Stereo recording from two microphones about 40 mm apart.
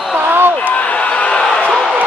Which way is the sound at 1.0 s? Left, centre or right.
Left.